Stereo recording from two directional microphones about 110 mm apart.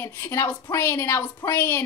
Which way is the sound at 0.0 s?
25° left (ahead or behind).